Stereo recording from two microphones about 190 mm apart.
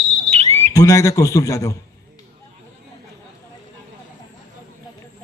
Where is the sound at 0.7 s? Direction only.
15° left (ahead or behind).